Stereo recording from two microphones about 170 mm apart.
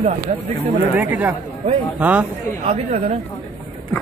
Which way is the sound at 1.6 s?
30° right (ahead or behind).